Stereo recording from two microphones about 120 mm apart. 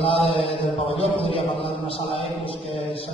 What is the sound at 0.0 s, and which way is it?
A man's voice, 50° left (ahead or behind).